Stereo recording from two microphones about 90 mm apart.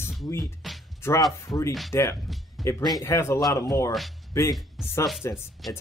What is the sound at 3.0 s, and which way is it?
Speech, 30° left (ahead or behind).